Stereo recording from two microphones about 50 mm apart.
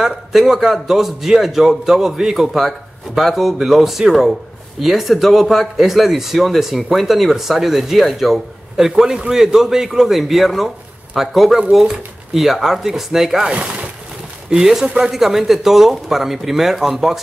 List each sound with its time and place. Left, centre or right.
0.0 s speech: centre
13.5 s speech: right
14.6 s a man's voice: centre